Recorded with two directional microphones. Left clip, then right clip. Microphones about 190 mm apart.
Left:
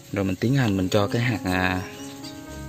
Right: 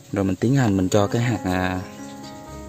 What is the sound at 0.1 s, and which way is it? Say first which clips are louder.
Speech: right 3 dB; 20° right (ahead or behind).